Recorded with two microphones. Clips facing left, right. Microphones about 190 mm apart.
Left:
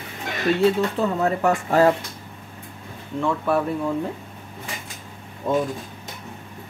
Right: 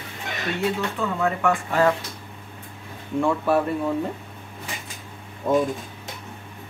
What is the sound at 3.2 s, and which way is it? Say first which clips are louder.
Speech: right 1 dB; centre (ahead or behind).